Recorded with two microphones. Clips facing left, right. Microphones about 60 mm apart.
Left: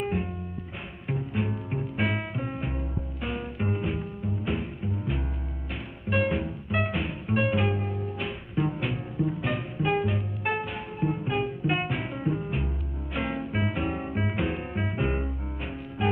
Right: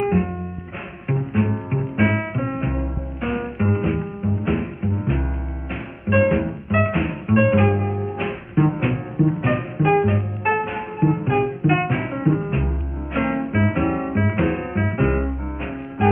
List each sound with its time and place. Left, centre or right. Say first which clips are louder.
0.0 s music: right 9 dB; right